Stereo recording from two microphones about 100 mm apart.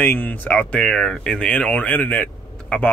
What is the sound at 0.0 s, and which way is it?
Speech, 15° left (ahead or behind).